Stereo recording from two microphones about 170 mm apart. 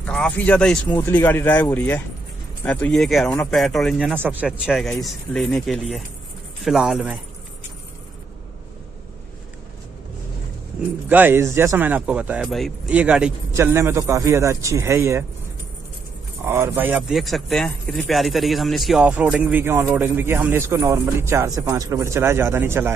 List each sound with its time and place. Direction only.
0.0 s speech: 5° left (ahead or behind)
4.1 s speech: 10° right (ahead or behind)
11.1 s speech: 10° right (ahead or behind)
16.4 s speech: 15° right (ahead or behind)
17.1 s speech: centre (ahead or behind)